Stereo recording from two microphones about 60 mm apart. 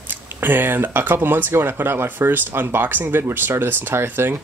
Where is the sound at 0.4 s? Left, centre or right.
Right.